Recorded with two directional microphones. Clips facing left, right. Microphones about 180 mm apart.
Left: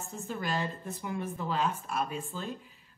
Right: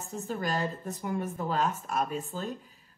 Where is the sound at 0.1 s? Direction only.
40° right (ahead or behind).